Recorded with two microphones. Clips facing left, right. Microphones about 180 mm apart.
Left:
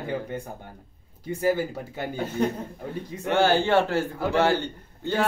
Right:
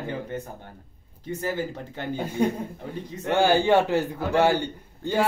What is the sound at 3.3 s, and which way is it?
A man's voice, 15° right (ahead or behind).